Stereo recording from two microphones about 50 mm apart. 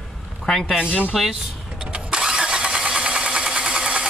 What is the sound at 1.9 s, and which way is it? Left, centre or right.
Engine starting, centre.